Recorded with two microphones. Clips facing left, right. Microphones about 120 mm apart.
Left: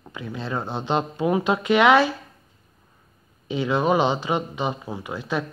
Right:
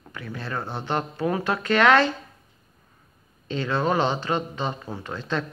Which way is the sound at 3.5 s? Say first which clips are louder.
Left 3 dB; 15° left (ahead or behind).